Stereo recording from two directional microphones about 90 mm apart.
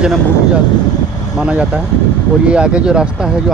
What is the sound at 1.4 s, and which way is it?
Speech, 10° right (ahead or behind).